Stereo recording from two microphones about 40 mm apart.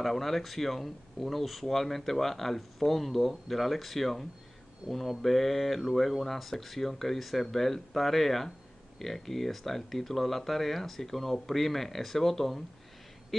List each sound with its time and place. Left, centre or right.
0.0 s speech: centre
4.8 s speech: right
5.2 s speech: centre